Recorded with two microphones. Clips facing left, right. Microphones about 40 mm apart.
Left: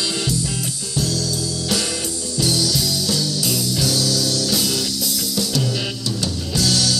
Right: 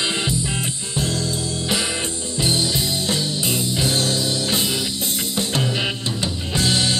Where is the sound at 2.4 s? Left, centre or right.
Right.